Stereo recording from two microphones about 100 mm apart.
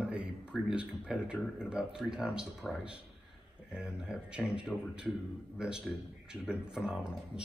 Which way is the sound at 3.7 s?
10° right (ahead or behind).